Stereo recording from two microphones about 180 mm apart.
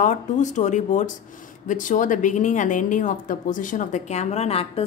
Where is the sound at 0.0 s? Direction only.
45° left (ahead or behind).